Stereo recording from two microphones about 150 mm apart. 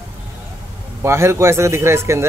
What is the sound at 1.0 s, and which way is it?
Speech, 15° right (ahead or behind).